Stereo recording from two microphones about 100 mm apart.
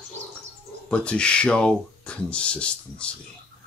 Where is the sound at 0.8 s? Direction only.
10° left (ahead or behind).